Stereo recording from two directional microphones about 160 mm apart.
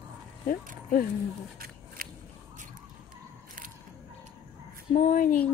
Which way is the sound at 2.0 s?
65° right (ahead or behind).